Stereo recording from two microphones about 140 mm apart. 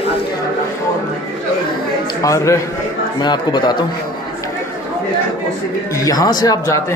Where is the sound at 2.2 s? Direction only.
20° left (ahead or behind).